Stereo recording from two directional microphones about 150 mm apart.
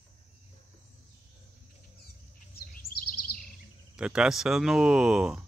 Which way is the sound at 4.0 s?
5° right (ahead or behind).